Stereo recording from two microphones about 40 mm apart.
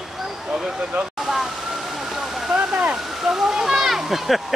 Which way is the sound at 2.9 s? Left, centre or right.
Centre.